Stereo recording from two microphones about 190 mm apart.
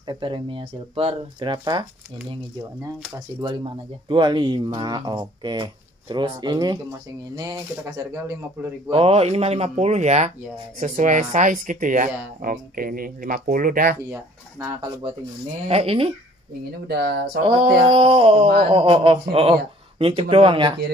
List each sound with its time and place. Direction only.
0.0 s speech: 25° right (ahead or behind)
3.3 s speech: 25° right (ahead or behind)
8.9 s speech: 30° right (ahead or behind); by 13.9 s 50° right (ahead or behind)
14.8 s speech: 25° right (ahead or behind)
16.8 s speech: 55° right (ahead or behind)
17.5 s speech: 25° right (ahead or behind)